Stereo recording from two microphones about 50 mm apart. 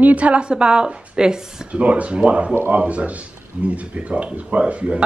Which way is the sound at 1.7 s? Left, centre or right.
Right.